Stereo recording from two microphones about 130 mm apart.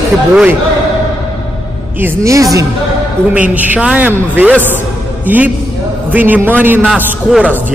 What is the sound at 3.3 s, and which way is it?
A man's voice, 10° right (ahead or behind).